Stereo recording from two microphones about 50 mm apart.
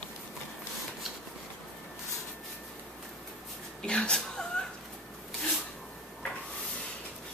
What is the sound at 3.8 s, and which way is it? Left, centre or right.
Speech, centre.